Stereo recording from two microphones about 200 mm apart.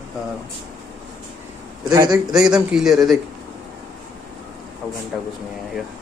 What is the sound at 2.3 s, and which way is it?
Speech, 5° right (ahead or behind).